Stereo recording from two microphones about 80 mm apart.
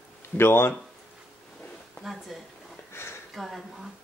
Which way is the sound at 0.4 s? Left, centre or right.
Left.